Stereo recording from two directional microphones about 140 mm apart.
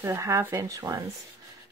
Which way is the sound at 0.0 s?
20° right (ahead or behind).